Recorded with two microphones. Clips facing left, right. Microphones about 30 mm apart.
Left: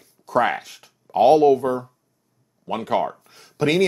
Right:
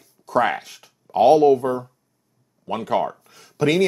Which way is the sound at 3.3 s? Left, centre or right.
Left.